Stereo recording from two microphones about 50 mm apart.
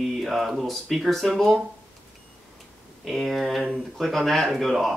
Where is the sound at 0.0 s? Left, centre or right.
Centre.